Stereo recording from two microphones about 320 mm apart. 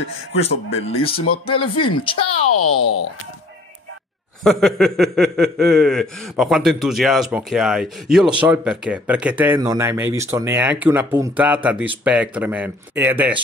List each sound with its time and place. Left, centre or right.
0.5 s speech: left
0.8 s speech: centre
2.5 s a child's voice: left
4.4 s speech: centre